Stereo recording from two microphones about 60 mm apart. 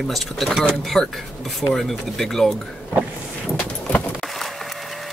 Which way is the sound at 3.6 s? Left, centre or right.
Left.